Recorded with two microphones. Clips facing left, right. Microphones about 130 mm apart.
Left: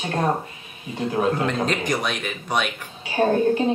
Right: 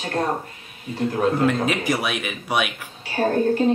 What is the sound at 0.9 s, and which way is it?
Speech, 15° left (ahead or behind).